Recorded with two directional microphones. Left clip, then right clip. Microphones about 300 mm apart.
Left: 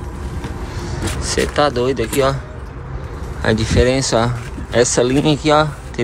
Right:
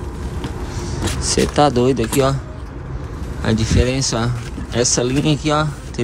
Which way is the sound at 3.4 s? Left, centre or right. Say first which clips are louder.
Left 4 dB; centre.